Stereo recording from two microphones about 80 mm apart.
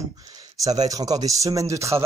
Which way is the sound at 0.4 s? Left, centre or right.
Right.